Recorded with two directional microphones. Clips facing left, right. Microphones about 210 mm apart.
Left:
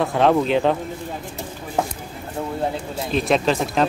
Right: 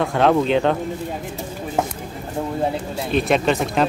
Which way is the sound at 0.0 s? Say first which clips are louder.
Even; centre (ahead or behind).